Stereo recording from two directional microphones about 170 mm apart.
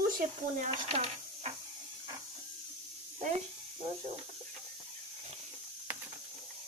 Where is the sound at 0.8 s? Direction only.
35° right (ahead or behind).